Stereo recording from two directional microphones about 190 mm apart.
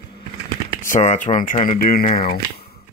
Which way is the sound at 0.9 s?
40° left (ahead or behind).